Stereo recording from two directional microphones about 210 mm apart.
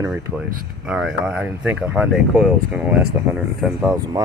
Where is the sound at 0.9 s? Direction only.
5° right (ahead or behind).